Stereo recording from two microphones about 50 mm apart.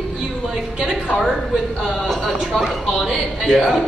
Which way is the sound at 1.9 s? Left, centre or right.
Centre.